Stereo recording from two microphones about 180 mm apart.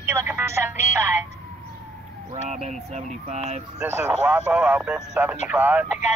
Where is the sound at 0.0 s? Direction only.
15° right (ahead or behind).